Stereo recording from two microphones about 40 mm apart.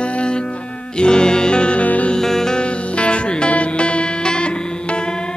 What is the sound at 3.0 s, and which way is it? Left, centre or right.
Music, left.